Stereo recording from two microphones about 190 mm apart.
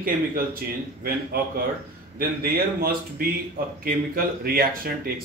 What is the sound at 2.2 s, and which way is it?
Speech, 50° right (ahead or behind).